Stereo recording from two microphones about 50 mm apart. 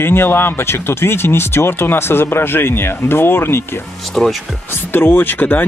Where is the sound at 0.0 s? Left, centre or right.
Left.